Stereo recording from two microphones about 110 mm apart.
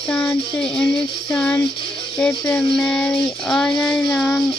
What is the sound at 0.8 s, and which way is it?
Child singing, 15° left (ahead or behind).